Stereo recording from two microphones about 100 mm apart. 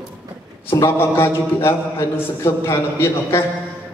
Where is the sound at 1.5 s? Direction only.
25° left (ahead or behind).